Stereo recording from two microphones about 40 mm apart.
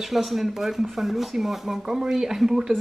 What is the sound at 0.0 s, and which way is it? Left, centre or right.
Speech, centre.